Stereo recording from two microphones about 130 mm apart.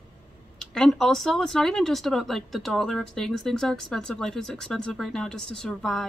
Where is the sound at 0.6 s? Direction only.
5° left (ahead or behind).